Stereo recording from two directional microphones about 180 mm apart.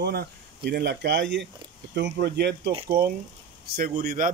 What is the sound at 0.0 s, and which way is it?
A man's voice, 60° right (ahead or behind).